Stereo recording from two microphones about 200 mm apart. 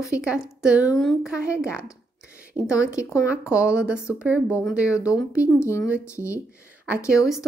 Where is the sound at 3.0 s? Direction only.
15° left (ahead or behind).